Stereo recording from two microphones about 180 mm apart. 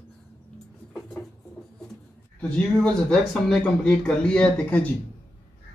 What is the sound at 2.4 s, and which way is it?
Speech, 5° left (ahead or behind).